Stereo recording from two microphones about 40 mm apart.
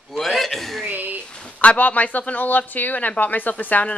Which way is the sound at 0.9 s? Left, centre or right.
Right.